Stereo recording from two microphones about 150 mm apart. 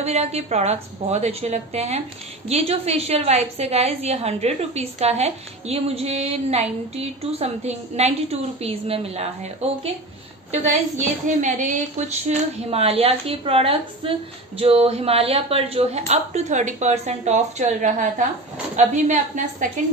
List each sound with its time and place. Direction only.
0.0 s a woman's voice: 45° right (ahead or behind)